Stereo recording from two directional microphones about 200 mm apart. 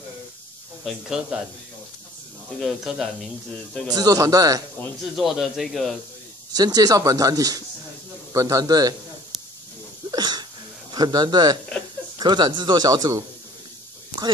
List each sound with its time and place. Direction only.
0.8 s a man's voice: centre (ahead or behind)
2.6 s a man's voice: centre (ahead or behind)
3.9 s speech: 20° right (ahead or behind)
5.0 s a man's voice: centre (ahead or behind)
6.5 s speech: 20° right (ahead or behind)
10.1 s sneeze: 20° right (ahead or behind)
10.9 s a man's voice: 20° right (ahead or behind)